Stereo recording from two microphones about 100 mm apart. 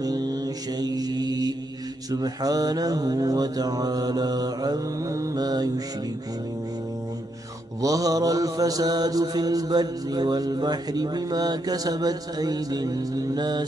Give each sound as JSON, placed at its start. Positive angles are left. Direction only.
{"t": 0.0, "sound": "mantra", "side_deg": -40}
{"t": 7.8, "sound": "mantra", "side_deg": -35}